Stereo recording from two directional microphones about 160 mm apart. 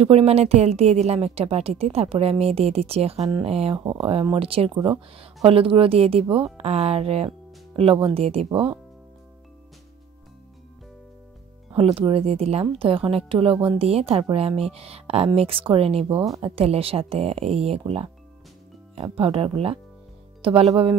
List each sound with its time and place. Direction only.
0.0 s a woman's voice: 40° right (ahead or behind)
11.7 s a woman's voice: 35° right (ahead or behind)